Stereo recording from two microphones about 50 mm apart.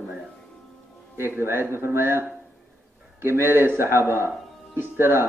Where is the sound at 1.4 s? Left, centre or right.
Right.